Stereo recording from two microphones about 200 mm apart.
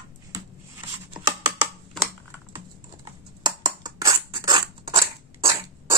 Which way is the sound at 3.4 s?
20° right (ahead or behind).